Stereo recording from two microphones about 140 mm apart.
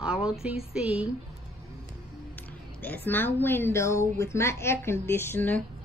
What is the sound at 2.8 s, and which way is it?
A woman's voice, 15° left (ahead or behind).